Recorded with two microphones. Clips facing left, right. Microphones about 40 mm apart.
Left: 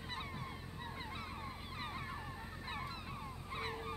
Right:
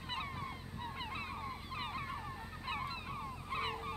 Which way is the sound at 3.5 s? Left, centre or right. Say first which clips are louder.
Right 4 dB; right.